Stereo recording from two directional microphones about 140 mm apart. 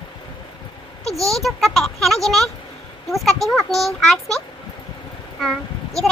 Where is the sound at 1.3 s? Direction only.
Centre (ahead or behind).